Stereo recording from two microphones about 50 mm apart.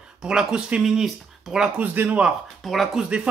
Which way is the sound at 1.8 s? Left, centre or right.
Right.